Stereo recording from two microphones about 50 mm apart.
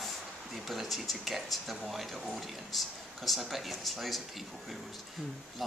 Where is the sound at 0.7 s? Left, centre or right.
Centre.